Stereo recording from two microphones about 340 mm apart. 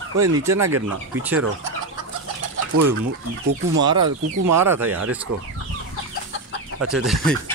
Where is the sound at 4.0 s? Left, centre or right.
Right.